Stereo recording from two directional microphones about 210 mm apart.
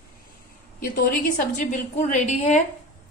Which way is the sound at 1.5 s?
35° left (ahead or behind).